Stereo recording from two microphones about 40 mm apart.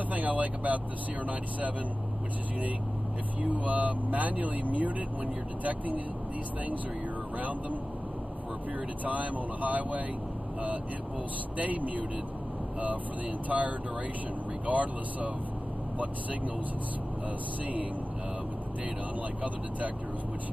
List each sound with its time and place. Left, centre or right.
0.1 s speech: right
3.4 s speech: right
9.0 s speech: right
11.5 s speech: right
13.5 s speech: right